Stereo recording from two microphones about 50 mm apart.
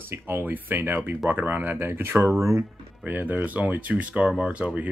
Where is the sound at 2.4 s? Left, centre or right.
Right.